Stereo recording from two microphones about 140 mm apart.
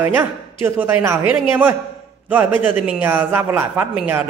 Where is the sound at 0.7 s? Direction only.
15° right (ahead or behind).